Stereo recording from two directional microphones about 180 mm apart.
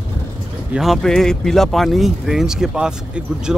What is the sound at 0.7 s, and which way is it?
Speech, centre (ahead or behind).